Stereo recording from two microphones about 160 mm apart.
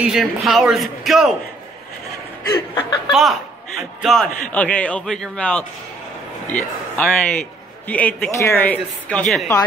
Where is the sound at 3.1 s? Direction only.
Centre (ahead or behind).